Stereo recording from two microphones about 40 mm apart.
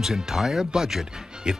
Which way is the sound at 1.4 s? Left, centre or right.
Right.